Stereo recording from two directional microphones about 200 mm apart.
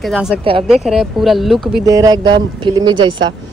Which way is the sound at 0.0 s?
Centre (ahead or behind).